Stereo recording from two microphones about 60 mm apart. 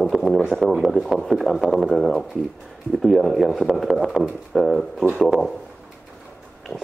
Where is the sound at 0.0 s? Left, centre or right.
Centre.